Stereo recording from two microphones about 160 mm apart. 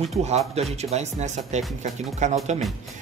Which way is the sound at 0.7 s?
45° right (ahead or behind).